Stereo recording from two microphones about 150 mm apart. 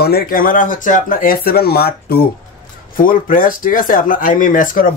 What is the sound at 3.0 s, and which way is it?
Speech, 70° left (ahead or behind).